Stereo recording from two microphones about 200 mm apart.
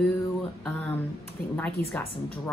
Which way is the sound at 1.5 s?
10° left (ahead or behind).